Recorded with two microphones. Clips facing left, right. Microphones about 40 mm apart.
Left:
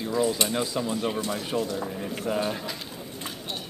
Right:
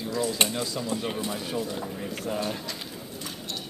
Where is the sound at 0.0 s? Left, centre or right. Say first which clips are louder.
Left 2 dB; centre.